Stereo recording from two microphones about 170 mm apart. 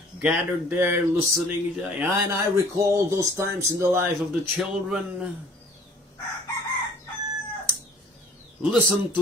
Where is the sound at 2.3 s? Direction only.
15° right (ahead or behind).